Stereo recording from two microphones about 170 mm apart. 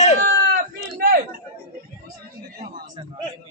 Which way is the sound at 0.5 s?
60° right (ahead or behind).